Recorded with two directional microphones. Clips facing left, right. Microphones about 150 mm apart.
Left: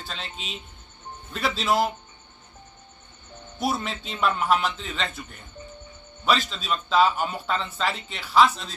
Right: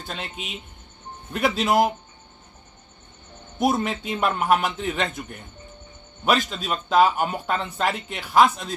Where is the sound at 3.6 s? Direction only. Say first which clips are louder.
Right 5 dB; 50° right (ahead or behind).